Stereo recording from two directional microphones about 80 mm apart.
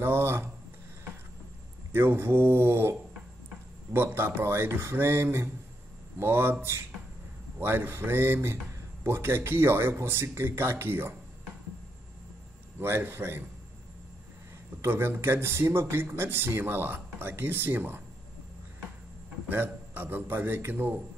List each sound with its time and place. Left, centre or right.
0.0 s speech: right
1.9 s speech: right
7.5 s speech: right
12.7 s speech: right
14.8 s speech: right
19.5 s speech: right